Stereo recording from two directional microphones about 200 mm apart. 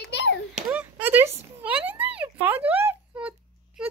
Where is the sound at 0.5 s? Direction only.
5° right (ahead or behind).